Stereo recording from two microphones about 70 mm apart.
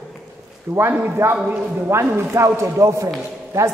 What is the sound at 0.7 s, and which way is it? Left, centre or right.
A man's voice, right.